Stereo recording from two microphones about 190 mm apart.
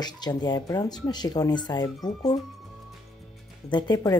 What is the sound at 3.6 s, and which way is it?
Speech, 25° left (ahead or behind).